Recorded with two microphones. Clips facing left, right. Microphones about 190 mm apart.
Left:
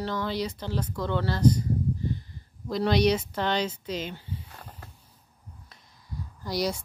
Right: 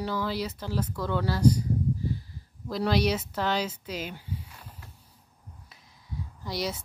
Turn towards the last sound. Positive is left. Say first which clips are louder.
# left 3 dB
turn(degrees=0)  # may be behind; listen again after turning